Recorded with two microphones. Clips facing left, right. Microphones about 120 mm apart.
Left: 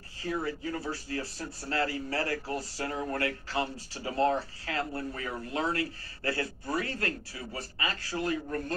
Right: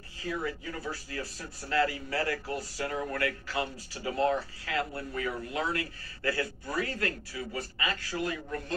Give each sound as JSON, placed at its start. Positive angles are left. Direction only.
{"t": 0.2, "sound": "speech", "side_deg": 30}